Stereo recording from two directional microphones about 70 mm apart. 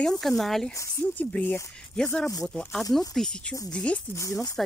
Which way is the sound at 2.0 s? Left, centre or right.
Centre.